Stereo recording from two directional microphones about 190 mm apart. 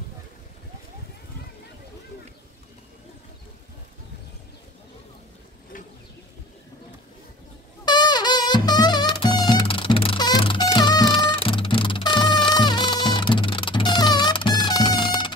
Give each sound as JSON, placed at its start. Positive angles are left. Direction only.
{"t": 7.8, "sound": "music", "side_deg": 20}